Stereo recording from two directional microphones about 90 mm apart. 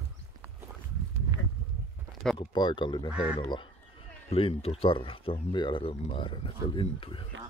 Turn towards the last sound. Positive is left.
turn(degrees=75)  # may be behind; listen again after turning